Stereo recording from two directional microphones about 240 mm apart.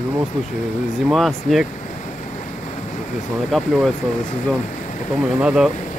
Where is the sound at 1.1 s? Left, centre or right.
Centre.